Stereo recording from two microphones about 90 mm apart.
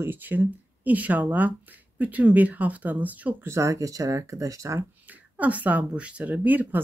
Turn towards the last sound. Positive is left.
turn(degrees=-20)  # may be behind; listen again after turning